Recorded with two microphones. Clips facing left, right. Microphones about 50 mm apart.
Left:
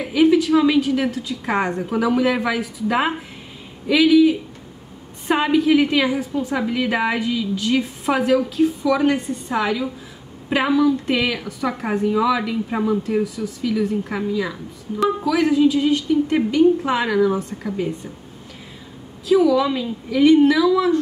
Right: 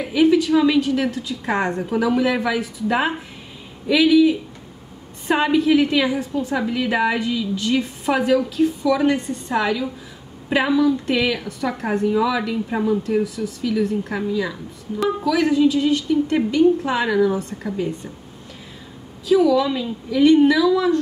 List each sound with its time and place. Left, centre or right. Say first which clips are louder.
0.0 s a woman's voice: left 1 dB; centre
19.2 s a woman's voice: even; centre